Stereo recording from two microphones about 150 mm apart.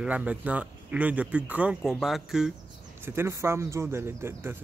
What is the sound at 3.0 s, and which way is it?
Speech, 15° right (ahead or behind).